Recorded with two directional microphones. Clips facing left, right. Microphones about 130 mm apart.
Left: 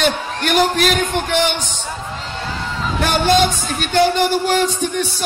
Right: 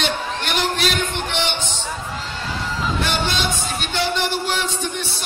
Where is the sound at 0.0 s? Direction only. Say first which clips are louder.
Left 5 dB; 45° left (ahead or behind).